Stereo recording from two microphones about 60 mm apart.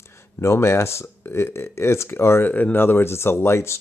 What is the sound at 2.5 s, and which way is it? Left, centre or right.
Speech, left.